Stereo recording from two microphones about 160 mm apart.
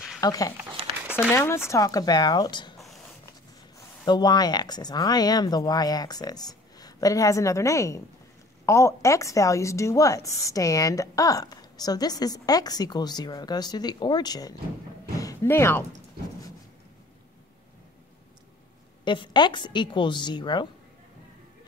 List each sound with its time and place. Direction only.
0.2 s speech: 20° left (ahead or behind)
4.0 s speech: 25° left (ahead or behind)
15.1 s a sound: 20° left (ahead or behind)
19.0 s speech: 30° left (ahead or behind)